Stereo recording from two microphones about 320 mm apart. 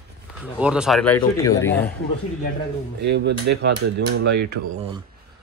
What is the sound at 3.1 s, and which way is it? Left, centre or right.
Dishes, right.